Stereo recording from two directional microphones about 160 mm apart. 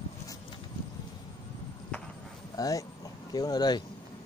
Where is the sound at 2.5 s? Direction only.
20° left (ahead or behind).